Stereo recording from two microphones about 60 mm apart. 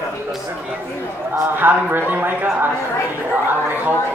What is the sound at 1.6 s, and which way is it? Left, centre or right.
Speech, right.